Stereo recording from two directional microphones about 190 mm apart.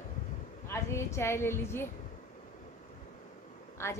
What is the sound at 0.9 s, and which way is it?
Speech, 15° left (ahead or behind).